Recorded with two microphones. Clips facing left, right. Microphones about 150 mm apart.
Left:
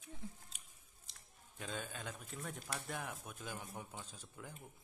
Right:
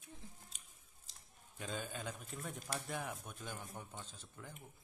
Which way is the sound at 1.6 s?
Centre (ahead or behind).